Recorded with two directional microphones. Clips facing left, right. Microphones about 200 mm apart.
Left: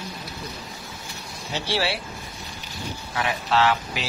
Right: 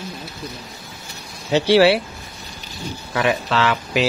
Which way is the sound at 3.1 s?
90° right.